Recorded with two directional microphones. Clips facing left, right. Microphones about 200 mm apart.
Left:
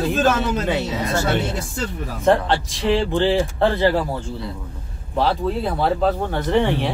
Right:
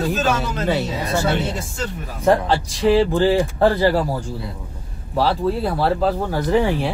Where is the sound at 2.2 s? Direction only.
5° right (ahead or behind).